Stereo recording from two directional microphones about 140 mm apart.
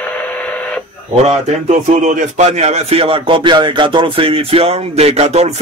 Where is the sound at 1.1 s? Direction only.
55° right (ahead or behind).